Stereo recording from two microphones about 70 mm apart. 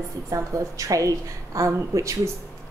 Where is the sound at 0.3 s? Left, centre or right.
Right.